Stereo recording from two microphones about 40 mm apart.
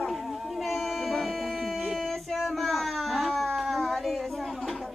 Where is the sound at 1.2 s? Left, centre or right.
Centre.